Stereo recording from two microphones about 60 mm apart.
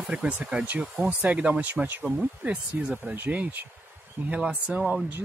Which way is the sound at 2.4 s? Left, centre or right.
Right.